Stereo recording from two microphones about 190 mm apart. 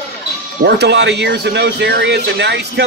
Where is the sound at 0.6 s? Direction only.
65° right (ahead or behind).